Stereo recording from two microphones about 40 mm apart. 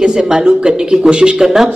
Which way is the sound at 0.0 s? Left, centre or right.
Centre.